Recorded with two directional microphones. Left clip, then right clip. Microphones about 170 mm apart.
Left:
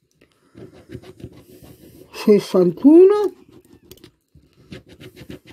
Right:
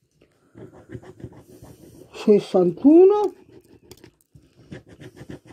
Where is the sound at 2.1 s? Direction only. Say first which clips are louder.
Left 2 dB; 25° left (ahead or behind).